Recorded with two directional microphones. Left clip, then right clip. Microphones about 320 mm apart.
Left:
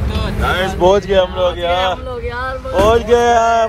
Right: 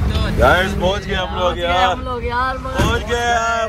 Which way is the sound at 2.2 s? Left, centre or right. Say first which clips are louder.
Right 5 dB; centre.